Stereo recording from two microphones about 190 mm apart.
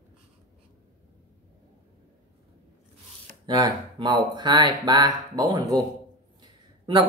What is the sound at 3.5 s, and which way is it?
Speech, 20° right (ahead or behind).